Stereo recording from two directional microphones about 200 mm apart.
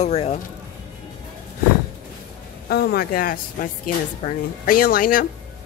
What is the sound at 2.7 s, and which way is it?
Speech, 55° left (ahead or behind).